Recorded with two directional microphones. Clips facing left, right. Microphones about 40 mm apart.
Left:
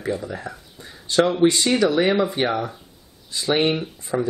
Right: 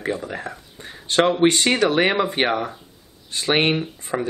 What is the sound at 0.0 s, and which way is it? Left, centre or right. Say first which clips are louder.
Speech: even; right.